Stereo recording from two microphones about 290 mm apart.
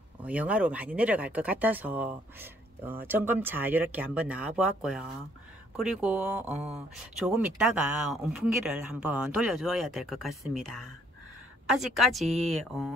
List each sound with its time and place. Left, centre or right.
0.2 s speech: centre